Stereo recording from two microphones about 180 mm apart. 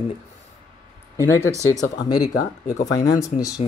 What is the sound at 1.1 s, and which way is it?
Speech, 15° left (ahead or behind).